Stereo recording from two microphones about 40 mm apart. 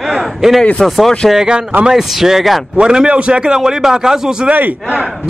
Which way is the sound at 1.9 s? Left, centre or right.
Centre.